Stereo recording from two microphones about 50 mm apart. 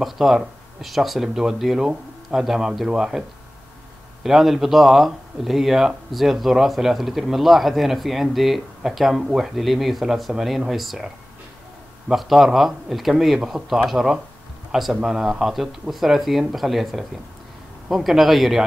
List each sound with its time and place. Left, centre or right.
0.0 s speech: centre
1.8 s speech: centre
12.1 s speech: centre
13.4 s speech: centre